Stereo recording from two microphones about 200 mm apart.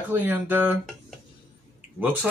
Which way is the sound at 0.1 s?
10° right (ahead or behind).